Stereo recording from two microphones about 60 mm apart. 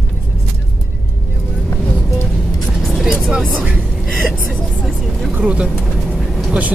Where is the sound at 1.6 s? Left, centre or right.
Left.